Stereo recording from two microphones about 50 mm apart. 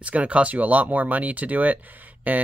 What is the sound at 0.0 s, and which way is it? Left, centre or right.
Speech, right.